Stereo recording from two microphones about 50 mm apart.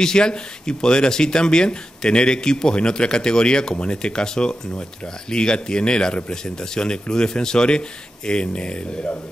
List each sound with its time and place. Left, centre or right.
0.0 s speech: centre